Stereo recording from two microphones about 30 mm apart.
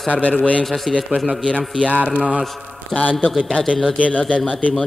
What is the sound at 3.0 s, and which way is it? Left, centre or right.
A man's voice, left.